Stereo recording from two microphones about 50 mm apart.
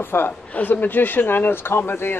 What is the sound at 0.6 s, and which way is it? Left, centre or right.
Speech, left.